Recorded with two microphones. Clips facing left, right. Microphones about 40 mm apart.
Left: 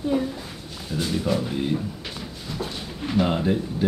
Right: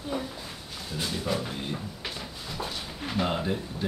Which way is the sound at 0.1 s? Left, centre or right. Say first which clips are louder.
Left 8 dB; centre.